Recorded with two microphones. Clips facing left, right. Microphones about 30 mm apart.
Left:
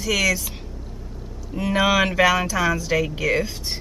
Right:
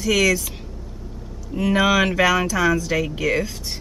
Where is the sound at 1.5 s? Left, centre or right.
Centre.